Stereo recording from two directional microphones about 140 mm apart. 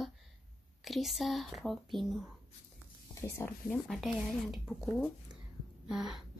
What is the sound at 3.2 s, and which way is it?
Speech, 20° left (ahead or behind).